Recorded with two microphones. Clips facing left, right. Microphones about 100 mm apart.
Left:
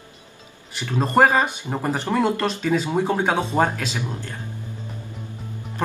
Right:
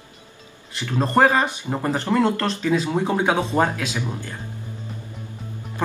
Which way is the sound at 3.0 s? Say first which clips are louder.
Right 1 dB; 10° right (ahead or behind).